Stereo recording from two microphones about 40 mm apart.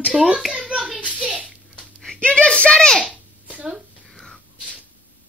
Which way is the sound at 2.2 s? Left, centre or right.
Left.